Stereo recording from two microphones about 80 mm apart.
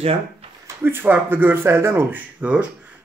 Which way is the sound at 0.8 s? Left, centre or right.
Right.